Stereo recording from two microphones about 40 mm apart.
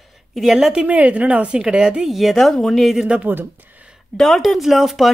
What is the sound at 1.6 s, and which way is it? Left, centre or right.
Speech, centre.